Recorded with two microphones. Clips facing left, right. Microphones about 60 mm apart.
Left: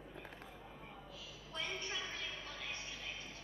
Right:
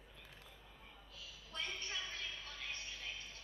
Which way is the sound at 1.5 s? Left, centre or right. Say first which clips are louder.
Left 2 dB; left.